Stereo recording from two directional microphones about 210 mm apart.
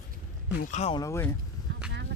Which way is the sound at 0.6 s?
35° left (ahead or behind).